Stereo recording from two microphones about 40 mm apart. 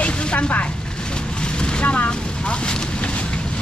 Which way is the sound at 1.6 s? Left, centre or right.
Left.